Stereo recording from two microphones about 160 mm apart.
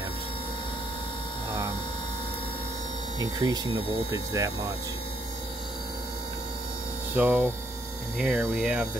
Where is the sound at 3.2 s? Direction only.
25° right (ahead or behind).